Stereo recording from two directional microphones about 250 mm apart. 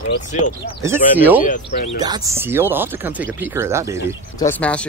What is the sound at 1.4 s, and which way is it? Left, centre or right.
Speech, left.